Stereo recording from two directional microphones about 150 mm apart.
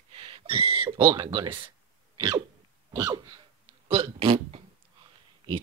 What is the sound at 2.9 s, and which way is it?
Cough, 25° right (ahead or behind).